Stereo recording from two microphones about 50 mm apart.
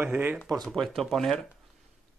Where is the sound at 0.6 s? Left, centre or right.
Centre.